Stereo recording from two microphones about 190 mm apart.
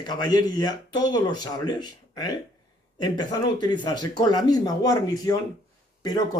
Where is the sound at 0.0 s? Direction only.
20° left (ahead or behind).